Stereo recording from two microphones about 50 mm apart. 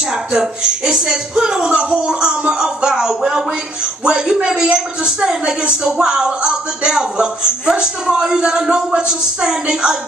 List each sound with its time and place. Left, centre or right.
0.1 s a woman's voice: centre